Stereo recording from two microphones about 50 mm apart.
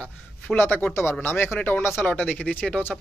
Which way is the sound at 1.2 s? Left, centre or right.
Left.